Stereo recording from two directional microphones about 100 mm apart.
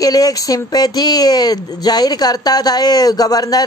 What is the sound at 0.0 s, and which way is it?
Speech, 40° left (ahead or behind).